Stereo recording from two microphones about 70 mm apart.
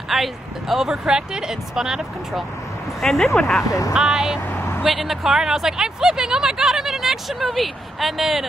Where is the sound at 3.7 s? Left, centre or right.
Left.